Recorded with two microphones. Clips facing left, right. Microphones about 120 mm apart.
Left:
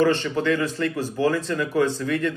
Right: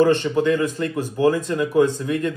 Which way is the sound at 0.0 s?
15° right (ahead or behind).